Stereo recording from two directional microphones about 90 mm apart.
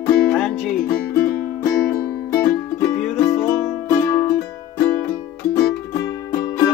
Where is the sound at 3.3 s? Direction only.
25° left (ahead or behind).